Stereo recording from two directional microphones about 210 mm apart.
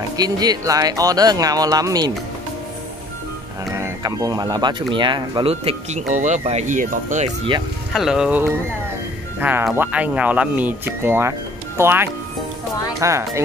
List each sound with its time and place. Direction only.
0.2 s speech: 20° right (ahead or behind)
3.7 s speech: 15° right (ahead or behind); by 7.2 s 35° right (ahead or behind)
7.9 s speech: centre (ahead or behind)